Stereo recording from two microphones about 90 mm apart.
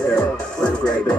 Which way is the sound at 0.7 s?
15° left (ahead or behind).